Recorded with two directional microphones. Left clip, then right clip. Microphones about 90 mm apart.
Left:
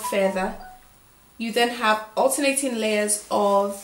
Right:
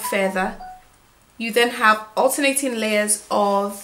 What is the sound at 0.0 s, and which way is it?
Speech, 35° right (ahead or behind).